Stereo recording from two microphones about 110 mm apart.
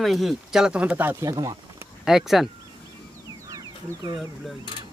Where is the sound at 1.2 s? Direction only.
30° right (ahead or behind).